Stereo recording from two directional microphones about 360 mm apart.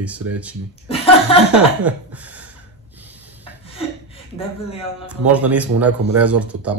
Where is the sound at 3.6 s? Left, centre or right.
Centre.